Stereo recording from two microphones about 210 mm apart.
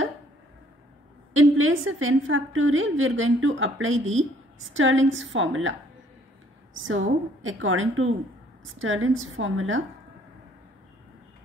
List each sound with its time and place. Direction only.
1.3 s a woman's voice: 75° right (ahead or behind)